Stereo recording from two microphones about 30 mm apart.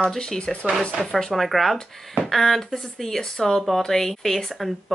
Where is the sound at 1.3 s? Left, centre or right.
Centre.